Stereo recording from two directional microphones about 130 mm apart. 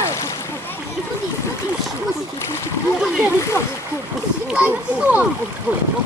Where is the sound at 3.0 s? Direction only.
5° right (ahead or behind).